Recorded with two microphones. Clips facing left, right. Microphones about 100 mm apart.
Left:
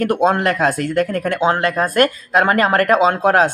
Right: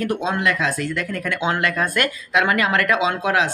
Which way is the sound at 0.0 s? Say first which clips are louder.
Left 6 dB; 55° left (ahead or behind).